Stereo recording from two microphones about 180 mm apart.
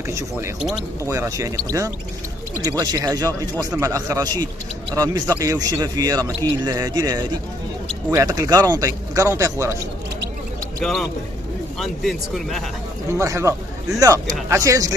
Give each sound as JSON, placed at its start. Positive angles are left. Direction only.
{"t": 1.0, "sound": "a man's voice", "side_deg": -15}
{"t": 10.8, "sound": "speech", "side_deg": 0}
{"t": 13.2, "sound": "a man's voice", "side_deg": -15}